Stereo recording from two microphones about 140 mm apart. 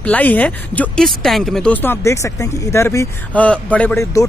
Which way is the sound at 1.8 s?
20° left (ahead or behind).